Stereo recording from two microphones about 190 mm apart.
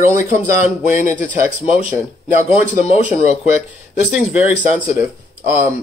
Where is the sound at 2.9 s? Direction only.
5° right (ahead or behind).